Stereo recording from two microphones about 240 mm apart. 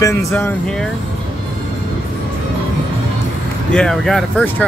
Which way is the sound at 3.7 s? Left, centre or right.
Centre.